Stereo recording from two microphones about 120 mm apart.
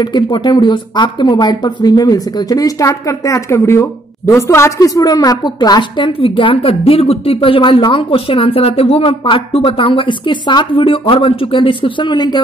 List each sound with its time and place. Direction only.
0.0 s speech: 35° left (ahead or behind)